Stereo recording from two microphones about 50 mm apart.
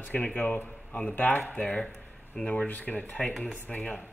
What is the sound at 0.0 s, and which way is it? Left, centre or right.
Speech, left.